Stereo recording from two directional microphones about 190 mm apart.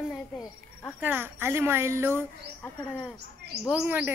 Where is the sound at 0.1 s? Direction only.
Centre (ahead or behind).